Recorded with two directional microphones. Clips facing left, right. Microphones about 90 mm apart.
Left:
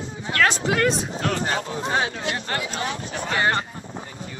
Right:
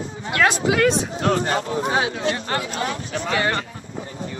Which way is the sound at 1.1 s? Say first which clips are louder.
Right 4 dB; 40° right (ahead or behind).